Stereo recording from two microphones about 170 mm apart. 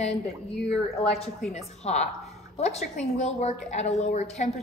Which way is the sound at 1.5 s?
40° left (ahead or behind).